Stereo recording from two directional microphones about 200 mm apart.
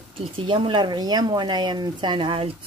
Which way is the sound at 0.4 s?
25° right (ahead or behind).